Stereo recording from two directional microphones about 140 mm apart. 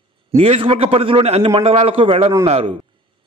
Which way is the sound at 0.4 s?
45° right (ahead or behind).